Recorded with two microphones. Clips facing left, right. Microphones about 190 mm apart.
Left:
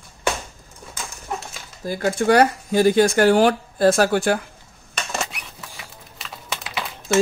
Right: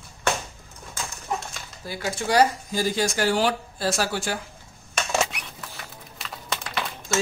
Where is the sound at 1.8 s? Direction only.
50° left (ahead or behind).